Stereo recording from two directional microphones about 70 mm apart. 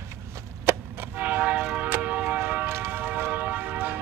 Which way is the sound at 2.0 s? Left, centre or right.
Centre.